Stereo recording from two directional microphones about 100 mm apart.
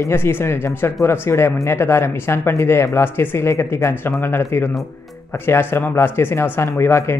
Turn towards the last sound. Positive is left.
turn(degrees=25)  # may be behind; listen again after turning